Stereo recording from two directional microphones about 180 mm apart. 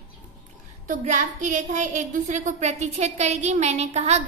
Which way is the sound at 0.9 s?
45° right (ahead or behind).